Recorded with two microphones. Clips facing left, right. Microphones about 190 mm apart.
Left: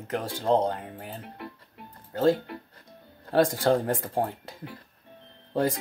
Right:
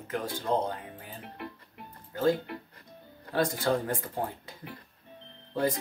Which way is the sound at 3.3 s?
50° left (ahead or behind).